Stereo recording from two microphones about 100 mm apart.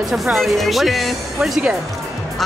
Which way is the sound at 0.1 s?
Centre (ahead or behind).